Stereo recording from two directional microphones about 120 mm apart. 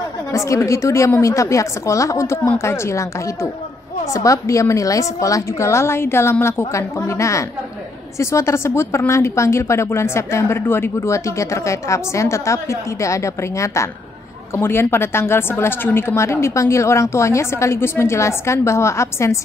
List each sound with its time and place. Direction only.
0.3 s a woman's voice: 25° left (ahead or behind)